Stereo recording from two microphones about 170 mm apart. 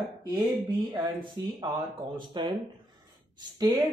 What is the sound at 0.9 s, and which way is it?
Speech, 25° right (ahead or behind).